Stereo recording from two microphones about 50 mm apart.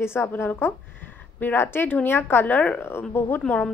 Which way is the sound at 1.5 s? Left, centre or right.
Left.